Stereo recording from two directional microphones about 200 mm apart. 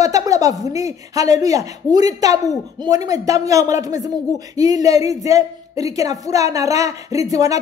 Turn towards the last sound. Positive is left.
turn(degrees=-15)  # may be behind; listen again after turning